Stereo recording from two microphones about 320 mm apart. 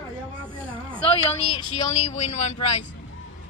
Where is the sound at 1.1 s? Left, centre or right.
Centre.